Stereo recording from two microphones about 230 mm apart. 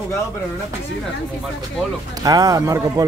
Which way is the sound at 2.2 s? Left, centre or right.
Centre.